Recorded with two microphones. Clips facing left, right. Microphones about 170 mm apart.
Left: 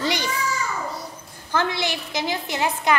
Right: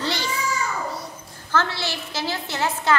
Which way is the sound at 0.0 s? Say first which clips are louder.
Left 2 dB; 15° left (ahead or behind).